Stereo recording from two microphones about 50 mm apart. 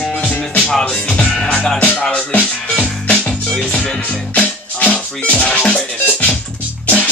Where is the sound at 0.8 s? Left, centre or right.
Centre.